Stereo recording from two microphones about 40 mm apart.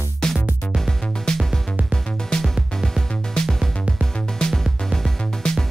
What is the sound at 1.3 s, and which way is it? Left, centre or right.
Music, centre.